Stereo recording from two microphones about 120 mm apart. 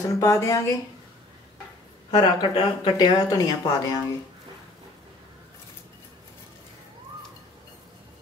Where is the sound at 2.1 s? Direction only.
35° left (ahead or behind).